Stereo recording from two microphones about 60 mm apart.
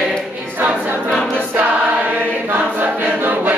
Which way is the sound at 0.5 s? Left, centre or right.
Right.